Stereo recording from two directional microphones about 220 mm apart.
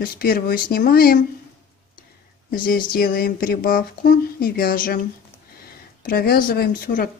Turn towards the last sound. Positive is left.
turn(degrees=40)  # may be behind; listen again after turning